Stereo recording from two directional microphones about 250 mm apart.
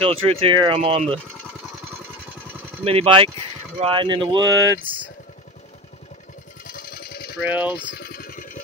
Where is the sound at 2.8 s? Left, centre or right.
Right.